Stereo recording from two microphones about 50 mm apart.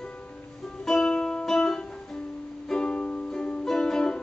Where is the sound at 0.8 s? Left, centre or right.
Centre.